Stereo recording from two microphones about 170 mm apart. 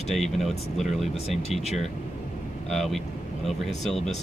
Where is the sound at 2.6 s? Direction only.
Centre (ahead or behind).